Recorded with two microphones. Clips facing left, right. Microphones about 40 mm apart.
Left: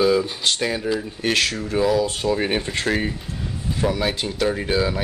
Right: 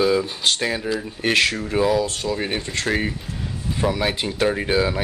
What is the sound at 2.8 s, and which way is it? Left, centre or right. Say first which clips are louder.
Speech: even; centre.